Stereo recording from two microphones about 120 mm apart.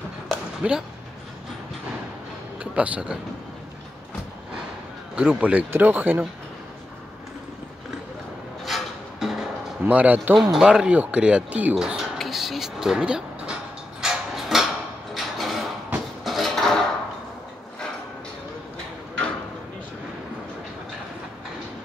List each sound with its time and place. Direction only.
0.6 s speech: 10° right (ahead or behind)
2.6 s speech: 10° right (ahead or behind)
5.1 s speech: 10° right (ahead or behind)
8.6 s music: centre (ahead or behind)
9.8 s speech: 15° right (ahead or behind)
14.0 s a sound: 5° right (ahead or behind)